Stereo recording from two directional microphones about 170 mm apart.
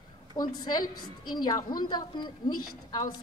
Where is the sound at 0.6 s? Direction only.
25° left (ahead or behind).